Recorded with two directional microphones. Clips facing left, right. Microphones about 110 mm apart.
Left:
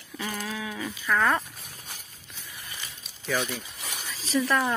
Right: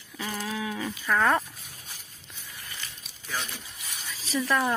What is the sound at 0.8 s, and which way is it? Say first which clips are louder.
Speech: even; 15° right (ahead or behind).